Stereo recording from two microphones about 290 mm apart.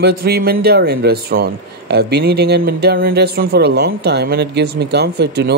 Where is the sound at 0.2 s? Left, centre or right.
Right.